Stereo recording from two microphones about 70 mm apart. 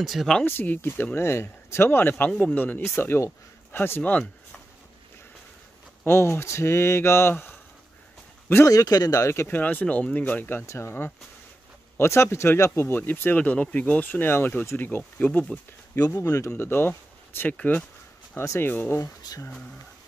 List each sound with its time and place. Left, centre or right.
0.0 s speech: centre
0.5 s speech: left
1.1 s speech: left
6.0 s speech: left
8.6 s speech: left
9.5 s speech: left
12.8 s speech: left
13.4 s speech: centre
15.9 s speech: left
16.5 s speech: left
18.3 s speech: left
18.7 s speech: left
19.2 s speech: left